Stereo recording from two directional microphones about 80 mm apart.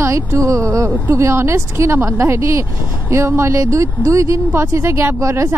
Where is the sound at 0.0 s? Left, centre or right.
Right.